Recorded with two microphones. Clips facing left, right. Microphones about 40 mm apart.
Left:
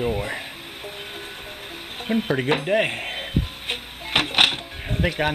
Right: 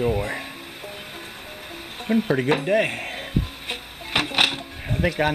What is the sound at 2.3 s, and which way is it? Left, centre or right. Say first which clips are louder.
Music: even; centre.